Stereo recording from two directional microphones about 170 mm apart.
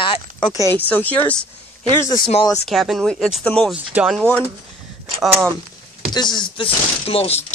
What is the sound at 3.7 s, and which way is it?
Speech, 5° right (ahead or behind).